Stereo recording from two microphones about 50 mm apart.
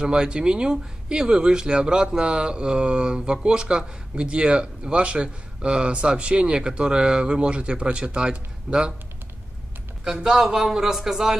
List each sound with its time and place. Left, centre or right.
0.0 s speech: centre
10.0 s speech: centre